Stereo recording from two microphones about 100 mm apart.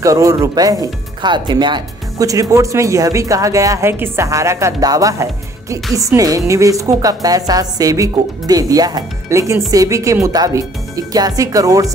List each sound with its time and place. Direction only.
0.0 s a woman's voice: 35° right (ahead or behind)
1.2 s speech: 50° right (ahead or behind)
2.2 s a woman's voice: 35° right (ahead or behind)
3.9 s a woman's voice: 20° right (ahead or behind)